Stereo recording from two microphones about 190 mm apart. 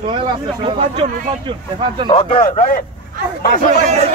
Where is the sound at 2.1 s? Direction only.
30° left (ahead or behind).